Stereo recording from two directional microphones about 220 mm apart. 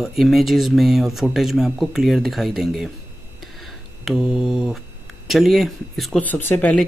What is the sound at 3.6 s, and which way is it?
Hum, centre (ahead or behind).